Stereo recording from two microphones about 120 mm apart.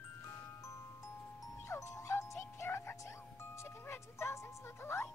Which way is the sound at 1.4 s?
25° left (ahead or behind).